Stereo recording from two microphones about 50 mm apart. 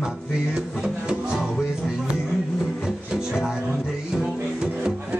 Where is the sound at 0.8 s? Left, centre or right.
Centre.